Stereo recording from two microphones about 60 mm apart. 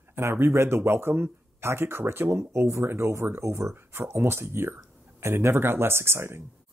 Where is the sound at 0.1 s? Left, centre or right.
Right.